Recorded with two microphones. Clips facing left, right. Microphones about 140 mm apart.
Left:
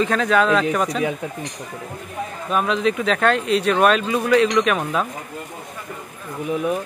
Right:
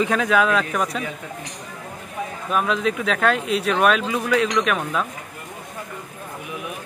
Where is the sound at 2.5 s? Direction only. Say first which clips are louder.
Left 2 dB; centre (ahead or behind).